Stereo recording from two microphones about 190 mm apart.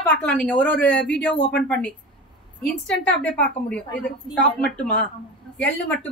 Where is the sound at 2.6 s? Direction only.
5° left (ahead or behind).